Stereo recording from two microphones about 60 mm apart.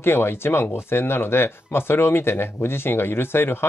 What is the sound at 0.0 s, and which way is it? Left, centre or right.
Speech, left.